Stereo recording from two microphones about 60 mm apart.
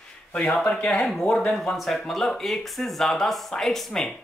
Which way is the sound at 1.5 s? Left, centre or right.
Centre.